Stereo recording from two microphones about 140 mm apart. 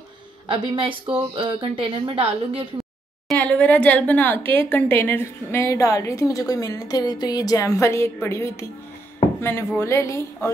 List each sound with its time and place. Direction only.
0.5 s speech: 40° right (ahead or behind)
3.3 s a woman's voice: 5° left (ahead or behind)